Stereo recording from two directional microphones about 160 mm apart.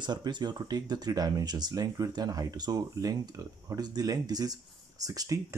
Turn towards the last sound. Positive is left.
turn(degrees=-20)  # may be behind; listen again after turning